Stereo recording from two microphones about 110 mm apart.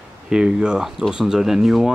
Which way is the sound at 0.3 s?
10° right (ahead or behind).